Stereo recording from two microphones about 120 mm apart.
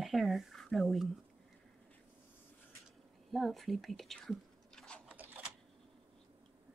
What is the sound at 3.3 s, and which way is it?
Whispering, centre (ahead or behind).